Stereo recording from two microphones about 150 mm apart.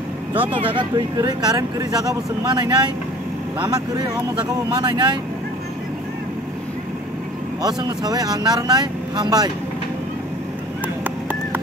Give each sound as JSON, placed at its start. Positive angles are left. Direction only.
{"t": 0.5, "sound": "speech", "side_deg": -35}
{"t": 7.6, "sound": "speech", "side_deg": -25}
{"t": 11.1, "sound": "a sound", "side_deg": -10}